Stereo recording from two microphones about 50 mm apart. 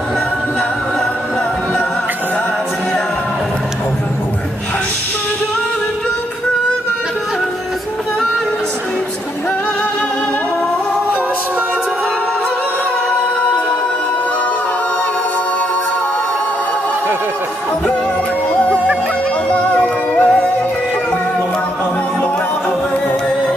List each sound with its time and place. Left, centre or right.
18.5 s music: left